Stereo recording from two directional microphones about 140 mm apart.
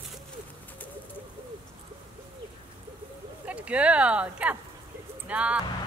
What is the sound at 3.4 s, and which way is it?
Speech, 10° right (ahead or behind).